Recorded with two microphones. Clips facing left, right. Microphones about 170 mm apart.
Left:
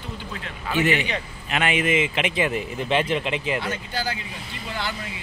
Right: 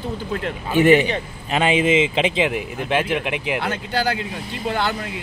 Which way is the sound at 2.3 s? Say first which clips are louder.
Right 3 dB; 15° right (ahead or behind).